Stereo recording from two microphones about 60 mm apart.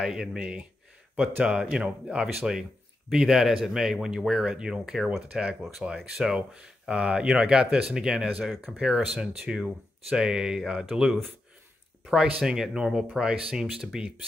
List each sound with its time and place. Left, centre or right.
0.0 s speech: centre